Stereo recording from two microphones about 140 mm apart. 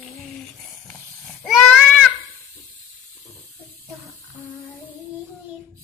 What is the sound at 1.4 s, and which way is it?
Goat, 5° left (ahead or behind).